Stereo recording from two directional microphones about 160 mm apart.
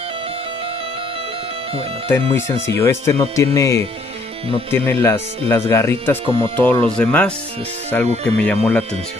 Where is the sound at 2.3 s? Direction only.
15° left (ahead or behind).